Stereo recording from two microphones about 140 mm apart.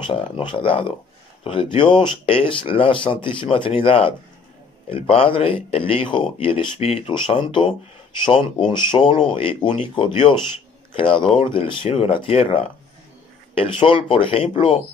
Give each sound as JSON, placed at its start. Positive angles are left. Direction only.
{"t": 0.0, "sound": "speech", "side_deg": 35}